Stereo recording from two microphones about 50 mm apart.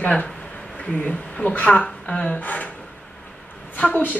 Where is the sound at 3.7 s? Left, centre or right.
Left.